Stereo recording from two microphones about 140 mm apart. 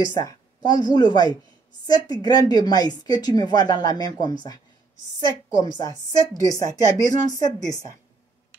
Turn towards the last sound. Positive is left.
turn(degrees=25)  # may be behind; listen again after turning